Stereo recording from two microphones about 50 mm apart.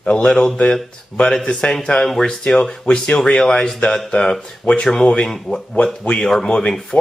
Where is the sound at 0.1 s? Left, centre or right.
Centre.